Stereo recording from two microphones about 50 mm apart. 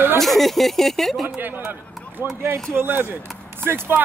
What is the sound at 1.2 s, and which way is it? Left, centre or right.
Speech, right.